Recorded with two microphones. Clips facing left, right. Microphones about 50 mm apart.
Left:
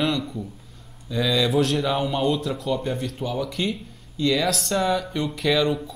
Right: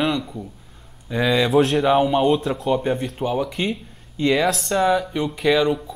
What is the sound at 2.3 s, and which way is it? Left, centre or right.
Speech, right.